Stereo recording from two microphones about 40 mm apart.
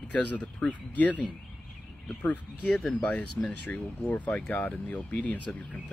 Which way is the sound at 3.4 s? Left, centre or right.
Left.